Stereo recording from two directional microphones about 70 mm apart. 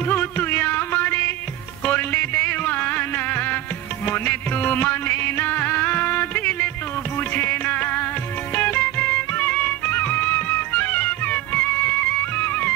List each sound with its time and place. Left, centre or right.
0.1 s music: left